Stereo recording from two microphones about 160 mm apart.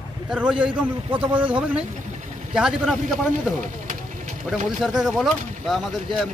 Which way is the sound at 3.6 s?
50° right (ahead or behind).